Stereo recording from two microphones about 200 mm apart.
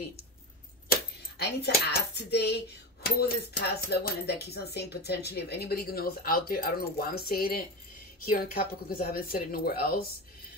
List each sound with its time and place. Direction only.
1.4 s speech: 55° left (ahead or behind)